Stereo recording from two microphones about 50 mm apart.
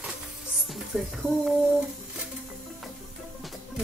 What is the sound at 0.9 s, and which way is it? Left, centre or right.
Speech, centre.